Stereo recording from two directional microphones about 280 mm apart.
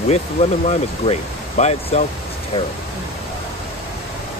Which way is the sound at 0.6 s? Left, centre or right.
Left.